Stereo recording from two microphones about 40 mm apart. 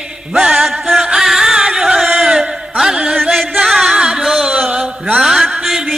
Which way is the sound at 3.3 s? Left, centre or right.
Centre.